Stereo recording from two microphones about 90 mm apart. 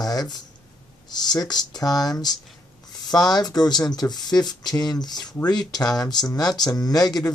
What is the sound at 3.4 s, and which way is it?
Speech, 50° left (ahead or behind).